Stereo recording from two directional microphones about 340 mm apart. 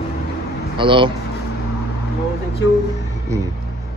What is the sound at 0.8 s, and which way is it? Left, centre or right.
Speech, centre.